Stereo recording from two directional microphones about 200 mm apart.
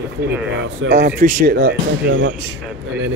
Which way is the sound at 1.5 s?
55° right (ahead or behind).